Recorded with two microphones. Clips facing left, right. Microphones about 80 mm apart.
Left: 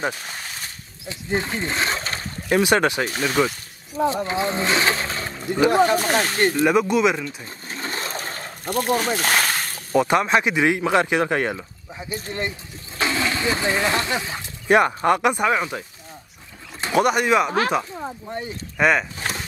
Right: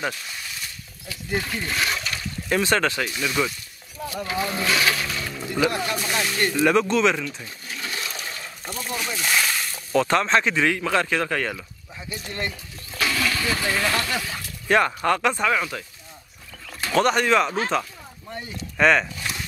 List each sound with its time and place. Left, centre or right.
0.0 s a sound: left
1.0 s speech: left
2.5 s speech: centre
3.1 s speech: left
4.0 s speech: left
6.6 s speech: centre
7.4 s a sound: left
8.6 s slosh: left
9.9 s speech: centre
16.8 s speech: centre
18.8 s speech: centre
19.1 s a sound: left